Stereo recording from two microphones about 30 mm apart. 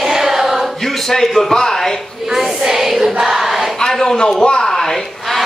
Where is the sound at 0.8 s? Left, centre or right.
Centre.